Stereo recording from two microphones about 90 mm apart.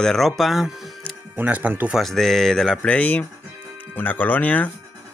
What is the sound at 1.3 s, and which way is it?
Speech, 20° right (ahead or behind).